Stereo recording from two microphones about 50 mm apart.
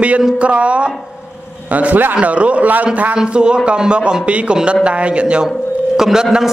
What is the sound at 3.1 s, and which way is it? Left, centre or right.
A man's voice, centre.